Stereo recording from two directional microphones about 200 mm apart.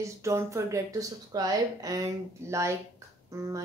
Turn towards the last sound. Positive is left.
turn(degrees=-15)  # may be behind; listen again after turning